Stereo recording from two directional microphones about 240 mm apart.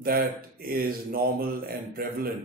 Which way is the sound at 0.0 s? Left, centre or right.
Right.